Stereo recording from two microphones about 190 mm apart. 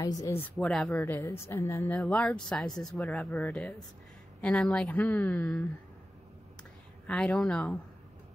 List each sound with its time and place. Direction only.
0.0 s a woman's voice: 20° left (ahead or behind)
0.6 s speech: centre (ahead or behind)
0.9 s a woman's voice: 15° left (ahead or behind)
2.0 s speech: centre (ahead or behind)
7.1 s speech: centre (ahead or behind)